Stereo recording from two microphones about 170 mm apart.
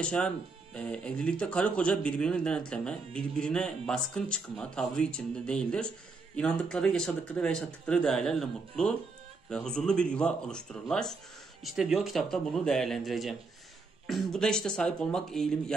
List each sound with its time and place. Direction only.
0.0 s speech: 5° left (ahead or behind)